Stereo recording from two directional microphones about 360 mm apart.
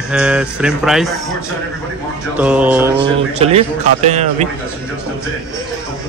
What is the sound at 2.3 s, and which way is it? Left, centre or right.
Speech, centre.